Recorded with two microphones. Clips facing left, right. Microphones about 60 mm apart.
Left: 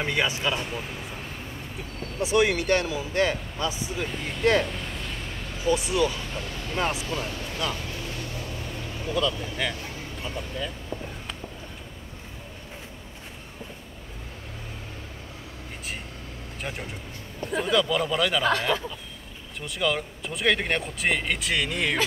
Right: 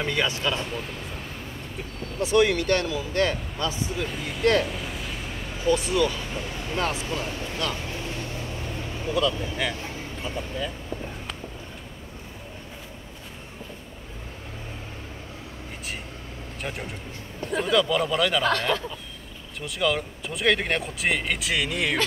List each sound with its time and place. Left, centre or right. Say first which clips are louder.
0.0 s speech: even; centre
3.9 s speech: right 1 dB; centre
4.6 s a sound: right 1 dB; centre
5.6 s speech: right 1 dB; centre
6.1 s speech: right 2 dB; centre
7.7 s vehicle: right 2 dB; right
9.0 s speech: right 2 dB; centre
16.6 s speech: right 1 dB; centre